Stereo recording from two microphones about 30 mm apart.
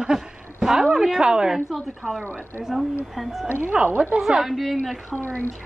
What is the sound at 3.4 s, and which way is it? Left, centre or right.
Speech, right.